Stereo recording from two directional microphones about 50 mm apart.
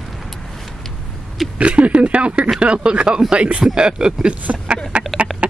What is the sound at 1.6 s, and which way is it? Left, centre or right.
Speech, right.